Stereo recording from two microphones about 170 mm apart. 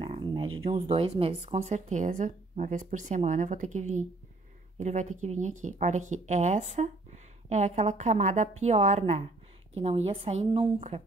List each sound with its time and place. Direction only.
0.0 s a woman's voice: 30° right (ahead or behind)